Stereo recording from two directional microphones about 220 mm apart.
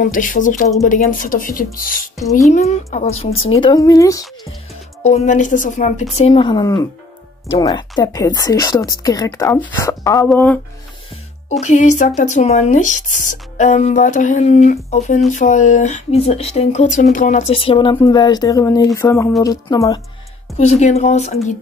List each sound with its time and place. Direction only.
0.0 s speech: 40° left (ahead or behind)
2.1 s speech: 15° left (ahead or behind)
2.5 s a woman's voice: 30° left (ahead or behind)
3.6 s a woman's voice: 15° left (ahead or behind)
5.0 s a woman's voice: 30° left (ahead or behind); by 10.6 s 5° left (ahead or behind)
11.6 s a woman's voice: 35° left (ahead or behind); by 20.0 s 15° left (ahead or behind)
20.5 s speech: 30° left (ahead or behind)